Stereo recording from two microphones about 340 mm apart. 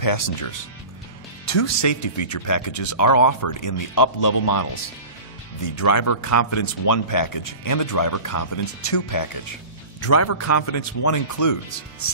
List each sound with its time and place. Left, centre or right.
0.0 s speech: left
1.4 s speech: left
5.8 s speech: left
9.9 s a man's voice: left